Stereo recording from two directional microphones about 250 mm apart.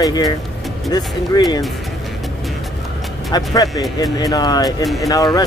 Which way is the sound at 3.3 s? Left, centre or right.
Centre.